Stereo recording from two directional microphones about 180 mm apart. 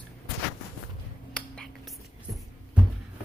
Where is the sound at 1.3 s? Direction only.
5° left (ahead or behind).